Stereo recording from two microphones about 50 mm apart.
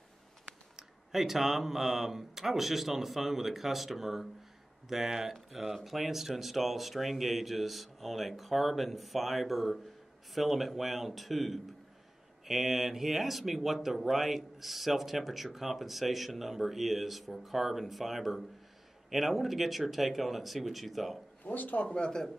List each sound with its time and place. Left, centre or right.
0.7 s speech: centre
21.5 s speech: left
21.8 s speech: centre